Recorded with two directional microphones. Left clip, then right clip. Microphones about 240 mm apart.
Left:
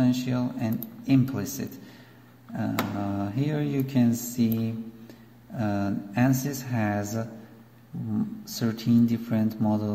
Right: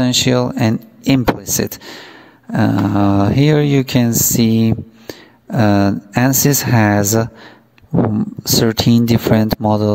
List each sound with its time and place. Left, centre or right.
0.0 s speech: right
8.5 s speech: right